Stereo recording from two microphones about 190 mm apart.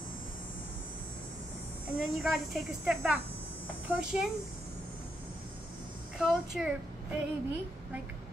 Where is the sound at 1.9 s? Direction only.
5° right (ahead or behind).